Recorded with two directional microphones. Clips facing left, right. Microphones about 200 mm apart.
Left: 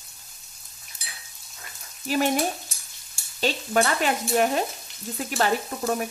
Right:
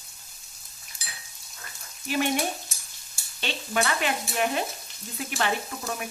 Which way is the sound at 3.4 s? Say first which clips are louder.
Left 5 dB; 40° left (ahead or behind).